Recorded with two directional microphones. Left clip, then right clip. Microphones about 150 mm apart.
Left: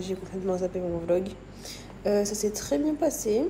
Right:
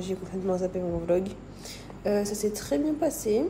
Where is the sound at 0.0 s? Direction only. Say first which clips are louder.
Even; 20° right (ahead or behind).